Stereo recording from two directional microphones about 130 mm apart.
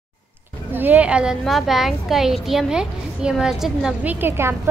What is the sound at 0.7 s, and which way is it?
A woman's voice, 10° right (ahead or behind).